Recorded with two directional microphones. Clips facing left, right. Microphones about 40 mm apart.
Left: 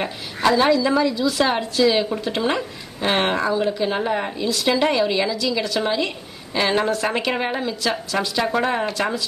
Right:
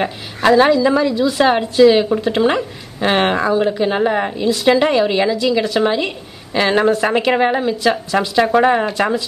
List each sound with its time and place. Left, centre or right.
0.0 s a woman's voice: right